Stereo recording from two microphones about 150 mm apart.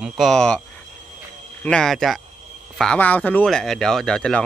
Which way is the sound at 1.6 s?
5° left (ahead or behind).